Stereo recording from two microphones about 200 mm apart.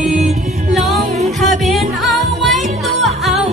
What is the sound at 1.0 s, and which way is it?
Music, 35° right (ahead or behind).